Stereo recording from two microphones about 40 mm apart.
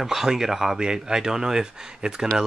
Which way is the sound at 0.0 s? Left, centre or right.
Centre.